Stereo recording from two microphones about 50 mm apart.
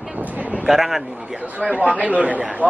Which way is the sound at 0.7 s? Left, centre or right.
Centre.